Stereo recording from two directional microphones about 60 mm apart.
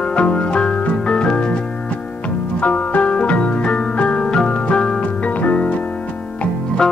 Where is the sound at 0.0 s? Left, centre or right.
Centre.